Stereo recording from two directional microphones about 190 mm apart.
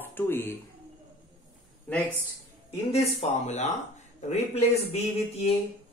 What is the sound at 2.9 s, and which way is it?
Speech, 35° left (ahead or behind).